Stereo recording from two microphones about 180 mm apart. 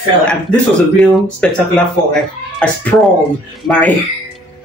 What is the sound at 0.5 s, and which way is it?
Speech, 5° left (ahead or behind).